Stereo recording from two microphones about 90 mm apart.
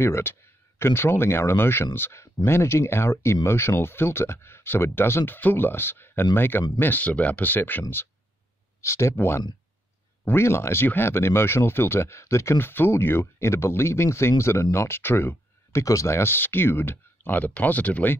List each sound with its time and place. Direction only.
0.0 s speech: 25° left (ahead or behind)
8.8 s speech: 30° left (ahead or behind)